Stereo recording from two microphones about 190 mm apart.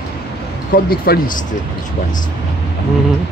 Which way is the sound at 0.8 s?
50° left (ahead or behind).